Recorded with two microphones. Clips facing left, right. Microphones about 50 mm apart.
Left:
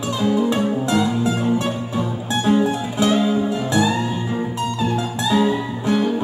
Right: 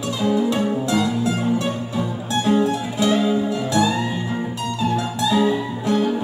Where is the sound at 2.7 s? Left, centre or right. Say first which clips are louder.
Left 1 dB; left.